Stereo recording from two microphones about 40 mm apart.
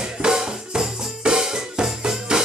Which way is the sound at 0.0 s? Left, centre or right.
Centre.